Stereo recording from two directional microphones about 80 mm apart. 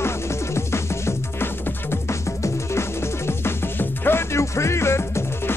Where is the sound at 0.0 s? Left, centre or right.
Left.